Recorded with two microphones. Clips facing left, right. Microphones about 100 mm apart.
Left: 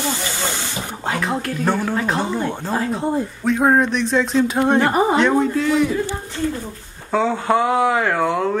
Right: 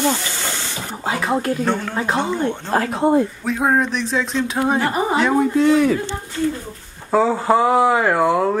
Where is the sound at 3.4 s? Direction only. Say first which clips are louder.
Left 2 dB; centre (ahead or behind).